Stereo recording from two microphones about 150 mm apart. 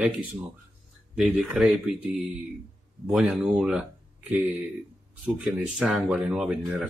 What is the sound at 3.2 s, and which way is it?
Speech, centre (ahead or behind).